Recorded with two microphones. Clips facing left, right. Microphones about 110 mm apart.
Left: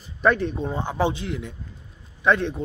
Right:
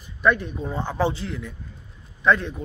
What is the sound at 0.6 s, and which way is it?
Speech, 20° left (ahead or behind).